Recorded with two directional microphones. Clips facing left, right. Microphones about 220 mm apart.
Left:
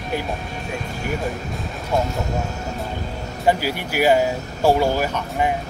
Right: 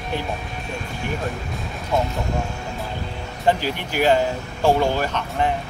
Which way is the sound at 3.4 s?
10° left (ahead or behind).